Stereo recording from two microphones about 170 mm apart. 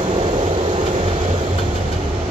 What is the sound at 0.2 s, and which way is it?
Vehicle, 30° right (ahead or behind).